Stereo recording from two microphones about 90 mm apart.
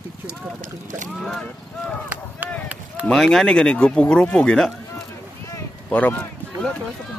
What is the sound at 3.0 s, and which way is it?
Speech, 5° left (ahead or behind).